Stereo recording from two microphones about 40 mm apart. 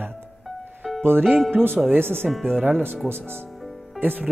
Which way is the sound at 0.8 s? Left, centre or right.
Centre.